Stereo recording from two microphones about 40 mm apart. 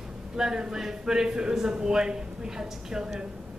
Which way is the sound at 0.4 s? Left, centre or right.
Centre.